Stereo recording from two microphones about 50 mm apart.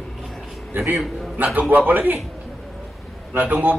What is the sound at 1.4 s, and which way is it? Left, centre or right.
Speech, right.